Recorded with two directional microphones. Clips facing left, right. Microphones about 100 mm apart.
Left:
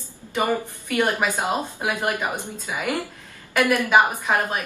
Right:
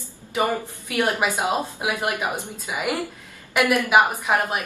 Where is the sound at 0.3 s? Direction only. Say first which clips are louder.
Even; 15° right (ahead or behind).